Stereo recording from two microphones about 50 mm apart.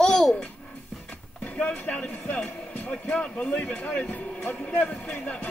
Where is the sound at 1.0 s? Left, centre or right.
Left.